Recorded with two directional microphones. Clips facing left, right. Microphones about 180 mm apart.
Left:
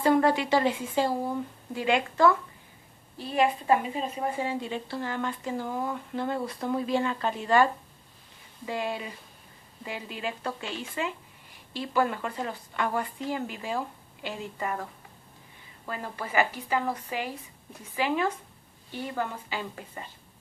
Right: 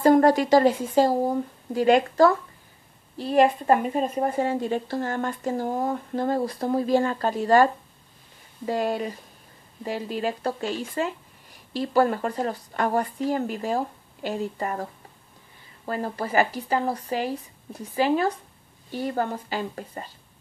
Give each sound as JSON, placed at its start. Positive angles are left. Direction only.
{"t": 0.0, "sound": "a woman's voice", "side_deg": -40}